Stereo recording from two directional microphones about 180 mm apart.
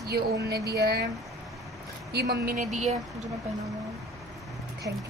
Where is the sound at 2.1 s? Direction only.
60° right (ahead or behind); by 2.9 s 40° right (ahead or behind).